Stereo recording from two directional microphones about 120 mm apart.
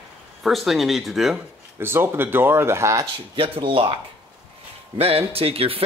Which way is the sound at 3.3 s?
50° right (ahead or behind).